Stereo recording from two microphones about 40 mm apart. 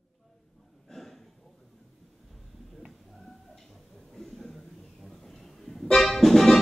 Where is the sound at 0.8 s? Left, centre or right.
Centre.